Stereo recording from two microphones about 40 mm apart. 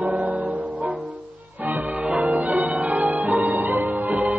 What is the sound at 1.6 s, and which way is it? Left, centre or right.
Music, right.